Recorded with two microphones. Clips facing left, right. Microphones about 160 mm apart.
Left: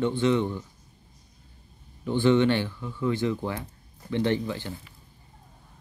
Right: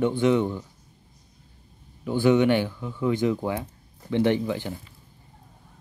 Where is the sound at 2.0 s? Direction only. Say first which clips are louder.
Right 1 dB; 10° right (ahead or behind).